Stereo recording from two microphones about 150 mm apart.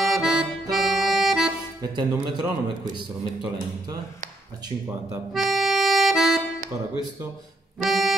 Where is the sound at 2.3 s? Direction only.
25° right (ahead or behind).